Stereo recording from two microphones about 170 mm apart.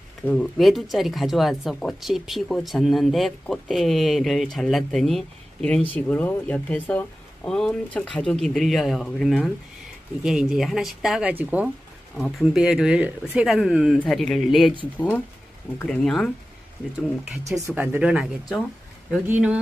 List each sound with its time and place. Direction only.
0.3 s speech: centre (ahead or behind)
17.6 s speech: 10° right (ahead or behind)